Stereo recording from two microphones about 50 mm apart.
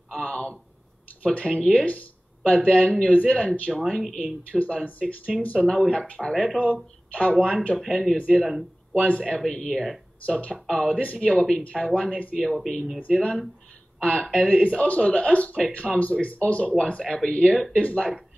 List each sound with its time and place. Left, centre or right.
0.1 s speech: left
6.3 s speech: centre
6.6 s speech: left
7.7 s speech: centre
8.9 s speech: left
9.4 s speech: centre
10.2 s speech: left
12.4 s speech: centre
13.1 s speech: left